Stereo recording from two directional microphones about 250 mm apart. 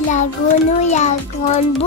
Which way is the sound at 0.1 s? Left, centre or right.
Left.